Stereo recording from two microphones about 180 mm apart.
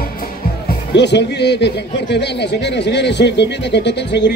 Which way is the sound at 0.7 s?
70° left (ahead or behind).